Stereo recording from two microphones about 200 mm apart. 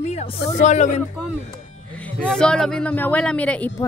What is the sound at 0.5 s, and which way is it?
Speech, 35° left (ahead or behind).